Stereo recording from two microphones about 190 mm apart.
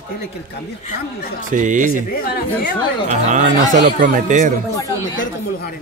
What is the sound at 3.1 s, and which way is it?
Speech, 40° right (ahead or behind).